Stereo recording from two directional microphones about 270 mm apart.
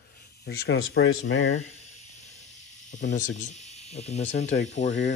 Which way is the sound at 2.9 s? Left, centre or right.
Left.